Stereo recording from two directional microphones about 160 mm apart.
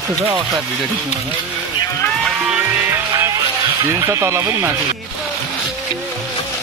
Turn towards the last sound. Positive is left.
turn(degrees=-15)  # may be behind; listen again after turning